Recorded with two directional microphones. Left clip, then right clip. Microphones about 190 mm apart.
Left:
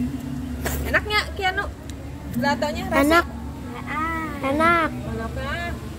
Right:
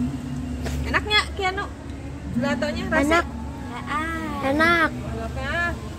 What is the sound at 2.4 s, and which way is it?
Speech, 15° right (ahead or behind).